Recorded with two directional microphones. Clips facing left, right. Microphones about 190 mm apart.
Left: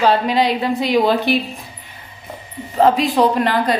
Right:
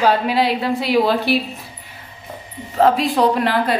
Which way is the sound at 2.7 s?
Centre (ahead or behind).